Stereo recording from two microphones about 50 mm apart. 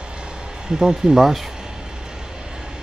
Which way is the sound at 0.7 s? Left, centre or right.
Centre.